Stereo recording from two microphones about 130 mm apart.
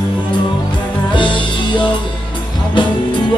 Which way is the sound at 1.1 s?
40° left (ahead or behind).